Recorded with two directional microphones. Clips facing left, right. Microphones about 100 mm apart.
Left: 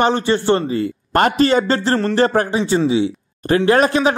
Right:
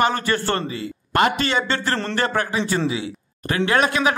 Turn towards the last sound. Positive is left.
turn(degrees=35)  # may be behind; listen again after turning